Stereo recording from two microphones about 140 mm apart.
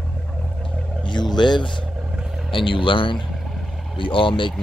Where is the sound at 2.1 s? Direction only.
5° right (ahead or behind).